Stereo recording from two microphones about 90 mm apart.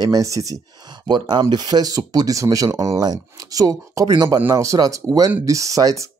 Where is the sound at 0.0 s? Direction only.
40° right (ahead or behind).